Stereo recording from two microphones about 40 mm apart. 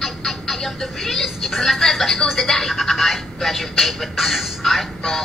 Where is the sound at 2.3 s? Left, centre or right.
Centre.